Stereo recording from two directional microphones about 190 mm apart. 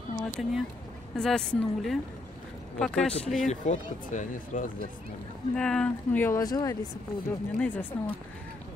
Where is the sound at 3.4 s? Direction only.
40° left (ahead or behind).